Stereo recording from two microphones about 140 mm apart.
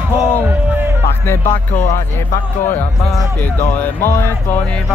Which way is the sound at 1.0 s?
15° left (ahead or behind).